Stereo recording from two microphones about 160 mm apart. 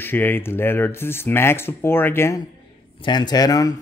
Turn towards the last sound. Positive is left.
turn(degrees=25)  # may be behind; listen again after turning